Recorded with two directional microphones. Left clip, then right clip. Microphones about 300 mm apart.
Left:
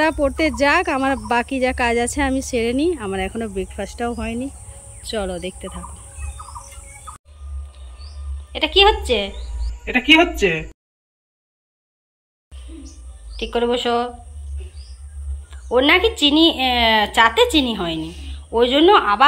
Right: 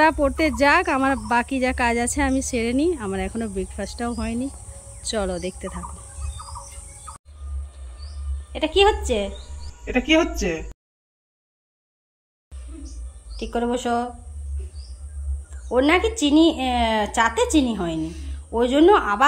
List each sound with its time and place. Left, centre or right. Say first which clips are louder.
0.0 s speech: even; centre
8.5 s speech: left 4 dB; centre
13.4 s speech: left 5 dB; centre
15.7 s speech: left 4 dB; centre